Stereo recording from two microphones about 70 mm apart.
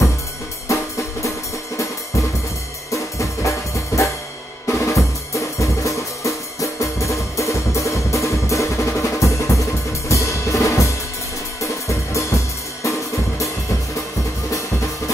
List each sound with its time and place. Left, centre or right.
0.7 s music: left
2.9 s music: left
4.6 s drum: left
11.6 s music: left